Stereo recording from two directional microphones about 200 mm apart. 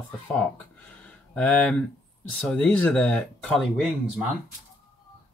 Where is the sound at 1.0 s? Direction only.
5° left (ahead or behind).